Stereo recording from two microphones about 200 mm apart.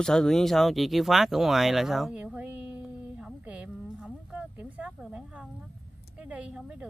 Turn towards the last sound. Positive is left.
turn(degrees=-5)  # may be behind; listen again after turning